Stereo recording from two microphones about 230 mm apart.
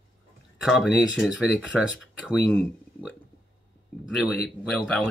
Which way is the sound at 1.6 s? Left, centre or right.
Centre.